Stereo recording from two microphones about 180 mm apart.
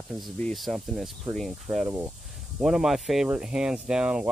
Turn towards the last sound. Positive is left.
turn(degrees=-5)  # may be behind; listen again after turning